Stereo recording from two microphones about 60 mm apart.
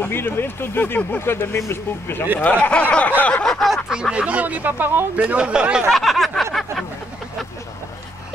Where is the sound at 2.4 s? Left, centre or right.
Left.